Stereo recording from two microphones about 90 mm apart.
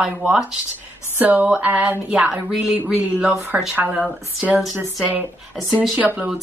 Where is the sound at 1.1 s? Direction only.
20° right (ahead or behind).